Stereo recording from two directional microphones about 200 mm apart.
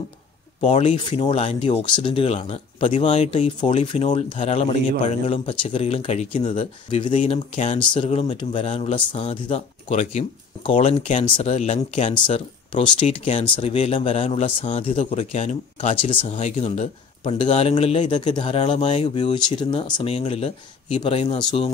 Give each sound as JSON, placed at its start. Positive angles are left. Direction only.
{"t": 0.6, "sound": "speech", "side_deg": 30}